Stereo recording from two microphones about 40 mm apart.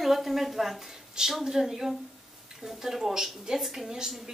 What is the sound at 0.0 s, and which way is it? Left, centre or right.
A woman's voice, centre.